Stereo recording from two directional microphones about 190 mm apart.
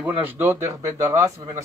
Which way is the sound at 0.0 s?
10° right (ahead or behind).